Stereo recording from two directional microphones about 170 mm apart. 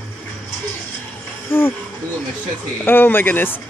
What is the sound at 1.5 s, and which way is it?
Speech, 15° left (ahead or behind).